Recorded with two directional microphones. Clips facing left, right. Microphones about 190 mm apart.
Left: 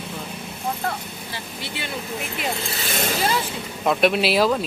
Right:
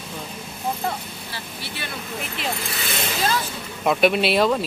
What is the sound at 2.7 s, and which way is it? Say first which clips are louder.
Vehicle: left 2 dB; 40° left (ahead or behind).